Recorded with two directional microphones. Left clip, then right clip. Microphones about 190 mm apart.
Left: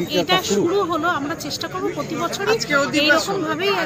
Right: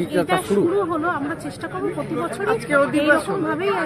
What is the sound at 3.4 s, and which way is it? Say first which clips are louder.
Speech: left 1 dB; 5° right (ahead or behind).